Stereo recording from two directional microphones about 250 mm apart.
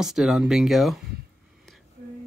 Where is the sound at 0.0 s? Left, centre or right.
Centre.